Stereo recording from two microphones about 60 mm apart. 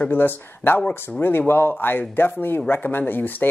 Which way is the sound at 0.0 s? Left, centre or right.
Left.